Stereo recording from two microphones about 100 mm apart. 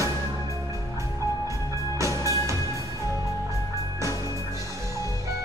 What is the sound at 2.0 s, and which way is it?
Music, 30° right (ahead or behind).